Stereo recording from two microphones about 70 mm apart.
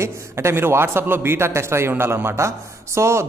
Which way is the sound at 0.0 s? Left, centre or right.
Right.